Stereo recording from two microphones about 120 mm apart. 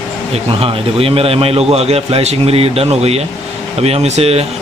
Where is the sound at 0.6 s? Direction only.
55° right (ahead or behind).